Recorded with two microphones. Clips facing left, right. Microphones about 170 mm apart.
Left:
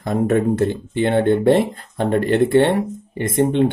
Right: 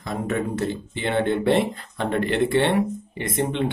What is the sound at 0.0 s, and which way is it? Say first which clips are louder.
Speech: left 8 dB; 50° left (ahead or behind).